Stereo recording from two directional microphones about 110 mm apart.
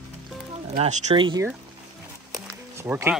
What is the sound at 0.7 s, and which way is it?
Speech, 90° right.